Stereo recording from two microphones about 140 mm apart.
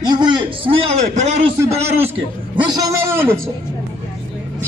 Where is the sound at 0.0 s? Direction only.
30° right (ahead or behind).